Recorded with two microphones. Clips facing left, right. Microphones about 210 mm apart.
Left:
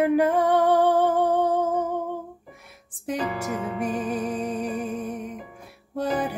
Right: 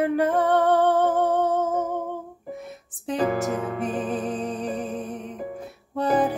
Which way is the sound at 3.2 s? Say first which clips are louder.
Right 6 dB; 50° right (ahead or behind).